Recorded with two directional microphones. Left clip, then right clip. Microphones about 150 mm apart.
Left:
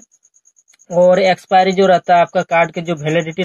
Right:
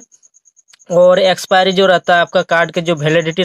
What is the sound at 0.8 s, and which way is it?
Speech, 35° right (ahead or behind).